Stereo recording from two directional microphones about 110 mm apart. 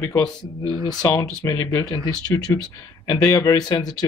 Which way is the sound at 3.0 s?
35° left (ahead or behind).